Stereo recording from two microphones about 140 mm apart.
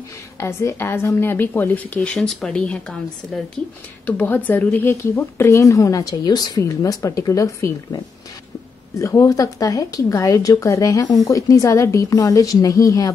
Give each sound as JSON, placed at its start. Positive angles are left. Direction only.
{"t": 0.4, "sound": "a woman's voice", "side_deg": 20}